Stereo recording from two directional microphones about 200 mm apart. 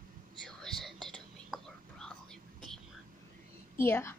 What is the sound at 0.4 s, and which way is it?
Whispering, centre (ahead or behind).